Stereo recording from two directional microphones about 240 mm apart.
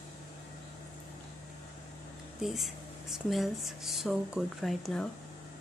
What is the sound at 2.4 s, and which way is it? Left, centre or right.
Speech, centre.